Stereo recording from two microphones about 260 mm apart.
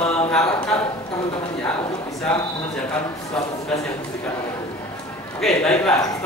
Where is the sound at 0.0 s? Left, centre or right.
Centre.